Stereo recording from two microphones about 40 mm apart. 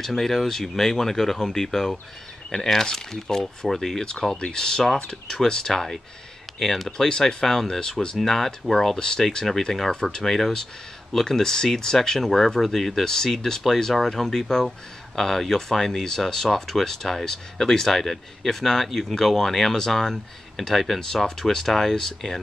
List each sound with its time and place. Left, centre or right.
0.0 s speech: centre
4.1 s speech: centre